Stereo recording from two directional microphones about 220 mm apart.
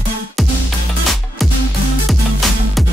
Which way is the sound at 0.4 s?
Centre (ahead or behind).